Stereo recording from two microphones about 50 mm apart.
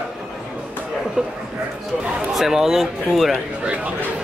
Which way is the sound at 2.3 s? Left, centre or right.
Centre.